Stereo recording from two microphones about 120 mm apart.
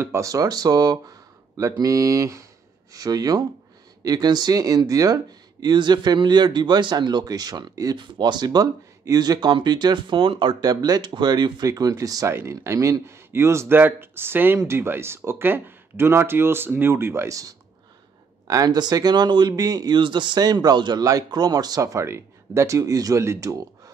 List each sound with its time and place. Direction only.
0.0 s speech: 25° right (ahead or behind)